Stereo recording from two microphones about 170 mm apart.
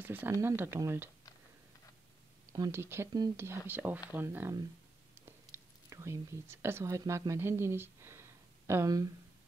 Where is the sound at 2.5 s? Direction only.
20° right (ahead or behind).